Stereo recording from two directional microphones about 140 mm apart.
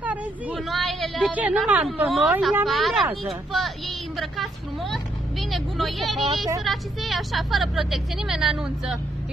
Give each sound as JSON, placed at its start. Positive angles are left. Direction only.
{"t": 0.0, "sound": "a sound", "side_deg": -10}
{"t": 0.6, "sound": "speech", "side_deg": 0}
{"t": 1.3, "sound": "a woman's voice", "side_deg": -10}